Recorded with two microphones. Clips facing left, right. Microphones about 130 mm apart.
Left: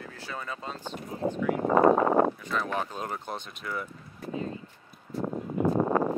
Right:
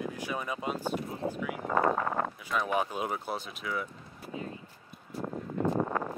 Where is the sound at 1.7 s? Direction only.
30° left (ahead or behind).